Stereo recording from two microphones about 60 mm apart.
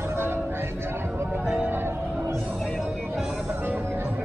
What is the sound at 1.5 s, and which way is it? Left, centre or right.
Music, right.